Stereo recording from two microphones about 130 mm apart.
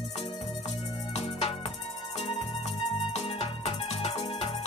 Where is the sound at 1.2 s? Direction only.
50° left (ahead or behind).